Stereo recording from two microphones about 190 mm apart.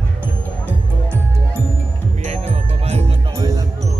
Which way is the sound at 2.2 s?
30° right (ahead or behind).